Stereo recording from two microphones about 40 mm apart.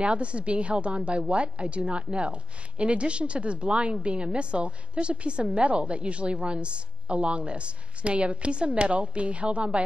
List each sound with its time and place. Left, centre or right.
0.0 s a woman's voice: right